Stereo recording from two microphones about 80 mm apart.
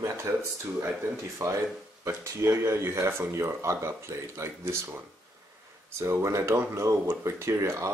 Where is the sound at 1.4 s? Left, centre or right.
Right.